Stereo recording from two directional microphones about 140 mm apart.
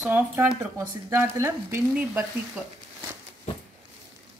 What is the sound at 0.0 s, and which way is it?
A woman's voice, 15° right (ahead or behind).